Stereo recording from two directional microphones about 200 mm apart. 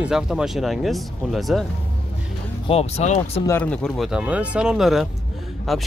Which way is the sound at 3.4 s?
10° left (ahead or behind).